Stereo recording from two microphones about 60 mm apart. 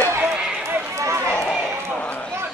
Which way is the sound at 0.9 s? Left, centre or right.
Right.